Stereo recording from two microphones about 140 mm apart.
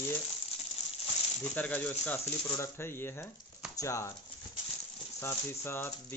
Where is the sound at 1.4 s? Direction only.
10° left (ahead or behind).